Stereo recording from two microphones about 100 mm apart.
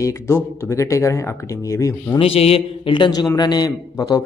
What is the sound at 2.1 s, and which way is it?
Speech, 80° left.